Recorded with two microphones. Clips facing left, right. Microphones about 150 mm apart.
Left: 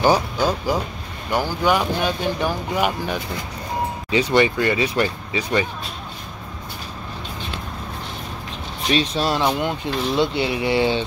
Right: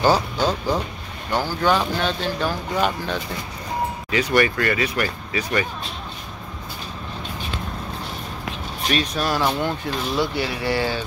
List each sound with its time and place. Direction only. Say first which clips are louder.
0.0 s speech: left 1 dB; 10° left (ahead or behind)
4.1 s speech: left 2 dB; 25° left (ahead or behind)
8.9 s speech: left 3 dB; 25° left (ahead or behind)